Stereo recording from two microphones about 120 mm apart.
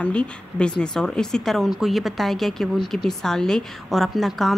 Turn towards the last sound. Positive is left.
turn(degrees=0)  # may be behind; listen again after turning